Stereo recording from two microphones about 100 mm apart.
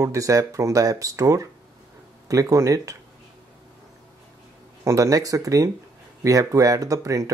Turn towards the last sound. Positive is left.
turn(degrees=-35)  # may be behind; listen again after turning